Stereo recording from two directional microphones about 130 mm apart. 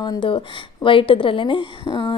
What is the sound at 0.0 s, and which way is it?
A woman's voice, 35° left (ahead or behind).